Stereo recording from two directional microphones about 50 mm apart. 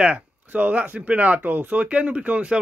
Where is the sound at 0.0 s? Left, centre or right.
Right.